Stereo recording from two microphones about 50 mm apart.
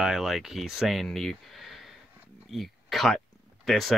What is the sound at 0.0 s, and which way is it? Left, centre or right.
Speech, centre.